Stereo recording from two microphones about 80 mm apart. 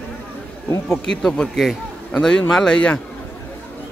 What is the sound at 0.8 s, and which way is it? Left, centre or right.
Speech, centre.